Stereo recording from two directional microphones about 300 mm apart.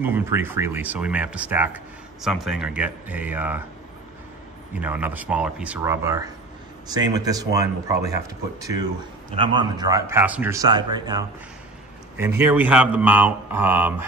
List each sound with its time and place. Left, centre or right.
0.0 s speech: centre
4.7 s a man's voice: centre